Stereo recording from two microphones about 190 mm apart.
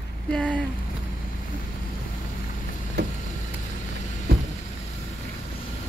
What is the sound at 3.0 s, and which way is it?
Vehicle, 60° right (ahead or behind).